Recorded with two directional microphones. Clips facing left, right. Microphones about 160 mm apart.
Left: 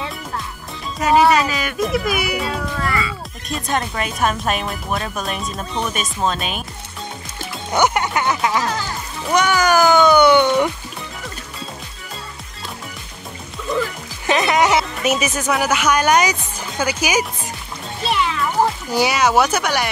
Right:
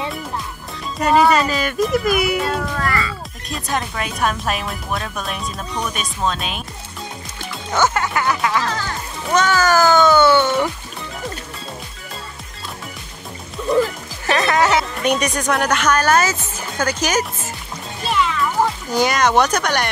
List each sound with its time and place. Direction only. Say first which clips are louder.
0.9 s speech: even; centre (ahead or behind)
7.7 s speech: left 1 dB; 20° left (ahead or behind)
14.2 s music: left 1 dB; 15° left (ahead or behind)
15.0 s speech: right 1 dB; 5° left (ahead or behind)
18.9 s speech: even; 10° left (ahead or behind)